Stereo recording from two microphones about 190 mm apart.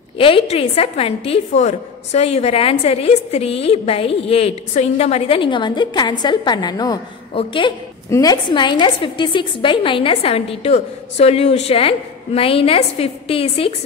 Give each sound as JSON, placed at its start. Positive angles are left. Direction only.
{"t": 0.2, "sound": "a woman's voice", "side_deg": 30}